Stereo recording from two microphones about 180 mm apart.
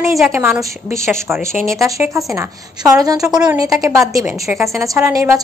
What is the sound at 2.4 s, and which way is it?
A woman's voice, 20° right (ahead or behind).